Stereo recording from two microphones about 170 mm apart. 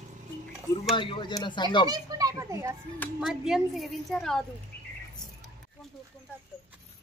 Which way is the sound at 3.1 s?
Centre (ahead or behind).